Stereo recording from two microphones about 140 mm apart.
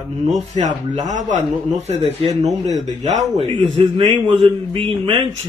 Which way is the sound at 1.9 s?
45° right (ahead or behind).